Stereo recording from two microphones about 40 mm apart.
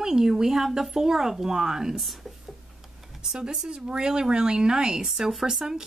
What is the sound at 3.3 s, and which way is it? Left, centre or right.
Speech, centre.